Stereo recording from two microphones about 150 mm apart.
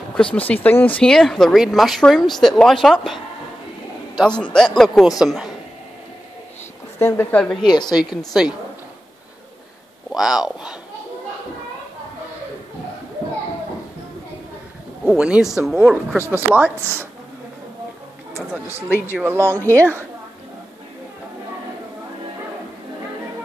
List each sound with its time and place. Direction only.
0.1 s a sound: 5° left (ahead or behind)
0.5 s speech: 10° left (ahead or behind)
4.2 s speech: 5° left (ahead or behind)
7.0 s a woman's voice: 15° left (ahead or behind)
7.6 s a woman's voice: 30° left (ahead or behind)
7.9 s speech: 5° right (ahead or behind)
10.1 s speech: 5° right (ahead or behind)
15.0 s speech: 5° right (ahead or behind)
19.0 s speech: 15° right (ahead or behind)
19.6 s a woman's voice: 10° left (ahead or behind)